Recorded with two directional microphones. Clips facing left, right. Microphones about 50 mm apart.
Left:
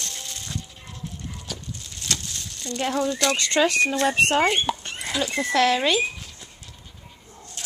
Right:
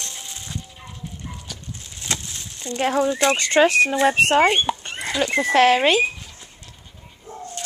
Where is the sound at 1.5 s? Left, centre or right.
Centre.